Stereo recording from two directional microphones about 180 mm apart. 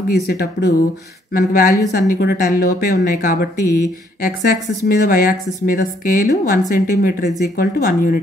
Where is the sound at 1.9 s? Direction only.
60° left (ahead or behind).